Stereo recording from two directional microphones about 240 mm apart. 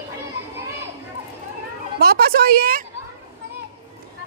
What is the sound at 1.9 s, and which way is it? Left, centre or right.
Speech, right.